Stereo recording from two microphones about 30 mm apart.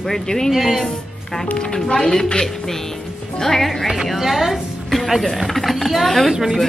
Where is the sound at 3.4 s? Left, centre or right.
Centre.